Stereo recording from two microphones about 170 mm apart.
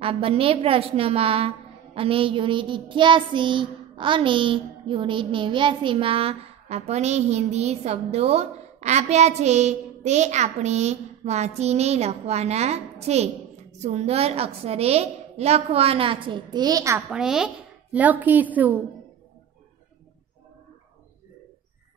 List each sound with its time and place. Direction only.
0.0 s child singing: 35° right (ahead or behind)
17.1 s a child's voice: 5° right (ahead or behind)